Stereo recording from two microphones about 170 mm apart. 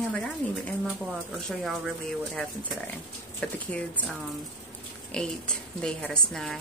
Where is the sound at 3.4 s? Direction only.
5° left (ahead or behind).